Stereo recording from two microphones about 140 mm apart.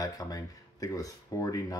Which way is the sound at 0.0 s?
25° left (ahead or behind).